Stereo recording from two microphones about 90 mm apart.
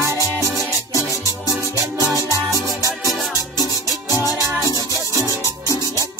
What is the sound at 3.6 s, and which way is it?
Music, 45° left (ahead or behind).